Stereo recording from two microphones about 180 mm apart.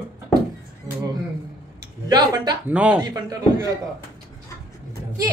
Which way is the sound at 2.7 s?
5° right (ahead or behind).